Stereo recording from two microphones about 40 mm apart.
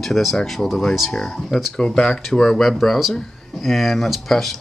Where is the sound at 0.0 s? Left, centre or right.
Centre.